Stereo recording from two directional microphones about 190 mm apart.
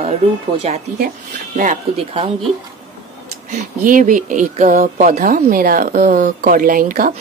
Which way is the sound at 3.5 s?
40° right (ahead or behind).